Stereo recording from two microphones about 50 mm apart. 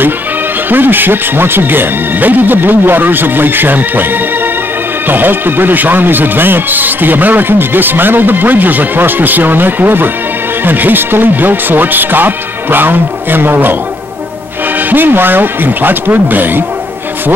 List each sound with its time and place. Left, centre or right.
0.7 s speech: right
14.8 s speech: right